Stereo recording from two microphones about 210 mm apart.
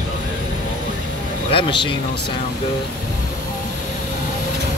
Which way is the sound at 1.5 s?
25° left (ahead or behind).